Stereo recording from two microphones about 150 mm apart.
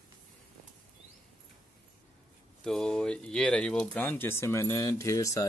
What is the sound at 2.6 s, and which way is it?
Speech, 5° left (ahead or behind).